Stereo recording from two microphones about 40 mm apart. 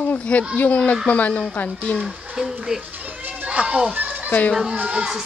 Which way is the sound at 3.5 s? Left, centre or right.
Right.